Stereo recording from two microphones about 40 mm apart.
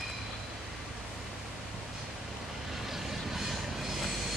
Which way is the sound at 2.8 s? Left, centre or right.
Centre.